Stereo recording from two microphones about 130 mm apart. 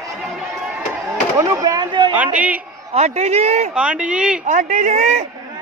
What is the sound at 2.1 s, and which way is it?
Speech, 10° right (ahead or behind).